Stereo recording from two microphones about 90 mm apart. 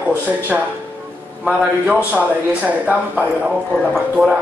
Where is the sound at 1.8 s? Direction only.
15° right (ahead or behind).